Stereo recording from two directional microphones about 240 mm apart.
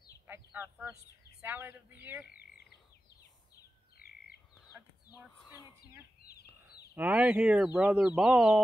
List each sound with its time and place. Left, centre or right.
0.3 s speech: centre
6.2 s chicken: left
7.0 s speech: centre